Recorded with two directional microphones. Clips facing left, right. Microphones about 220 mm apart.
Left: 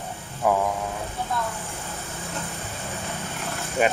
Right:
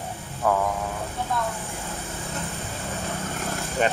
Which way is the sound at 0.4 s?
10° left (ahead or behind).